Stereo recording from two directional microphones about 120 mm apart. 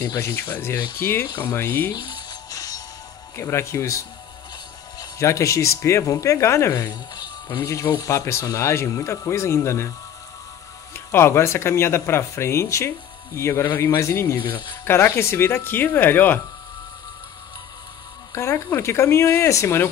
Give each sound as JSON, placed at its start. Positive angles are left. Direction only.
{"t": 0.0, "sound": "speech", "side_deg": 20}
{"t": 1.2, "sound": "speech", "side_deg": 30}
{"t": 1.6, "sound": "speech", "side_deg": 20}
{"t": 1.9, "sound": "music", "side_deg": 35}
{"t": 3.3, "sound": "speech", "side_deg": 20}
{"t": 14.4, "sound": "speech", "side_deg": 40}
{"t": 14.9, "sound": "speech", "side_deg": 20}
{"t": 18.3, "sound": "speech", "side_deg": 25}